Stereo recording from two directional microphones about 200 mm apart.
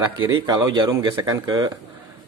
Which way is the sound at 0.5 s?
20° right (ahead or behind).